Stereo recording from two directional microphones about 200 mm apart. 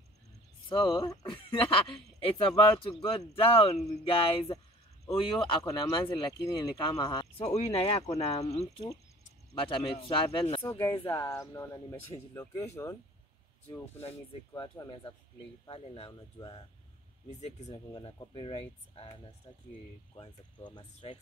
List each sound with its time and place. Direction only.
0.7 s speech: 20° left (ahead or behind)
11.1 s speech: 15° left (ahead or behind)
14.6 s speech: 25° left (ahead or behind)
17.3 s speech: 35° left (ahead or behind)